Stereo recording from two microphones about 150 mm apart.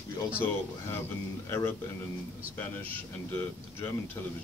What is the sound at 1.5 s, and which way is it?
Speech, 15° left (ahead or behind).